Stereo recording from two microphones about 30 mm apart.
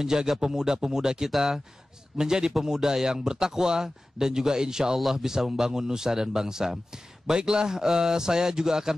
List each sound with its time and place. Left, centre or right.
0.0 s a man's voice: centre